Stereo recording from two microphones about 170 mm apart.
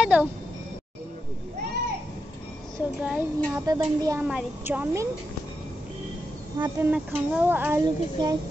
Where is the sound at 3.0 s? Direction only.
10° right (ahead or behind).